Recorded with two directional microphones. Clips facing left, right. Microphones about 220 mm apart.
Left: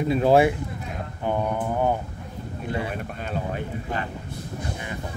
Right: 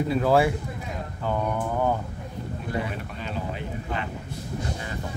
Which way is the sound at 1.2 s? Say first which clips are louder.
Left 2 dB; 20° left (ahead or behind).